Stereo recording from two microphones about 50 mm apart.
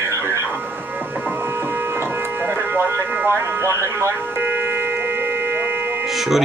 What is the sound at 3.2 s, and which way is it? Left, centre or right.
Speech, right.